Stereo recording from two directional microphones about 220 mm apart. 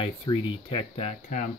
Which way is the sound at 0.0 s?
20° left (ahead or behind).